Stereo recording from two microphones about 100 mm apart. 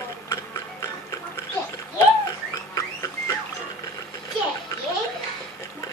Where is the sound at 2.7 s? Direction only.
30° left (ahead or behind).